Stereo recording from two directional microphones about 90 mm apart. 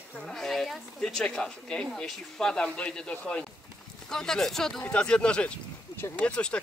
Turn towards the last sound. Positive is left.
turn(degrees=10)  # may be behind; listen again after turning